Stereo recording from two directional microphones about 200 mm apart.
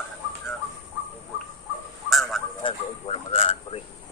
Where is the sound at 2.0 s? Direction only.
Centre (ahead or behind).